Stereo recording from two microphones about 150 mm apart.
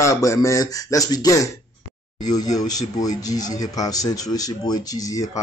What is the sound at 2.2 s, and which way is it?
Speech, 50° left (ahead or behind).